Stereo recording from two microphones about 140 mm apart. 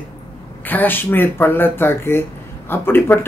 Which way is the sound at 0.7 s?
15° left (ahead or behind).